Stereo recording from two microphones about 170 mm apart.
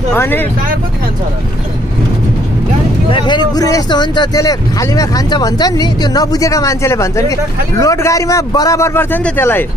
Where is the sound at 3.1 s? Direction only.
25° left (ahead or behind); by 9.7 s 10° left (ahead or behind).